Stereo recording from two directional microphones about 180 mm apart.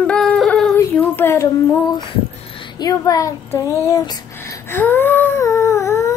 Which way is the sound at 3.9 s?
20° left (ahead or behind).